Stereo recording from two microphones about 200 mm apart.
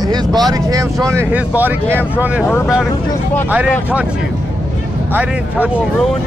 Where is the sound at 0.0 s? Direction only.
20° right (ahead or behind).